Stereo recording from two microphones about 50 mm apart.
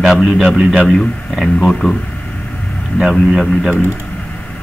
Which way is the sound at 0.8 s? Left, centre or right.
Centre.